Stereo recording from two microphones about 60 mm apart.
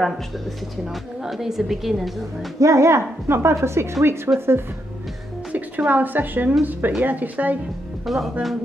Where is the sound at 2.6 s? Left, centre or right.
Right.